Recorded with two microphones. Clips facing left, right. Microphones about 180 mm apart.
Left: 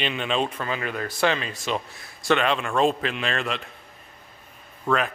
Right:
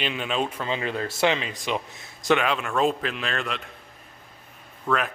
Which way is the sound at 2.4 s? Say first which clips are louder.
Left 2 dB; 5° right (ahead or behind).